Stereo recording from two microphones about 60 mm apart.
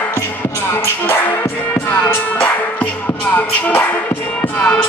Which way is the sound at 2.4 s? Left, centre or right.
Left.